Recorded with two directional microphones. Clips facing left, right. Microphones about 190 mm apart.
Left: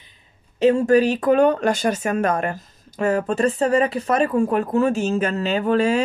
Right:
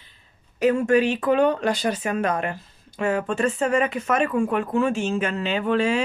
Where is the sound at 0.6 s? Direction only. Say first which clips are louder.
Left 3 dB; 30° left (ahead or behind).